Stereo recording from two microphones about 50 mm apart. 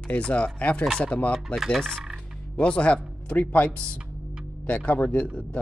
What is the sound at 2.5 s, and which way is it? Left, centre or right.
Speech, left.